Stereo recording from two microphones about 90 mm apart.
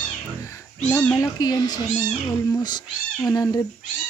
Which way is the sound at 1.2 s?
45° left (ahead or behind).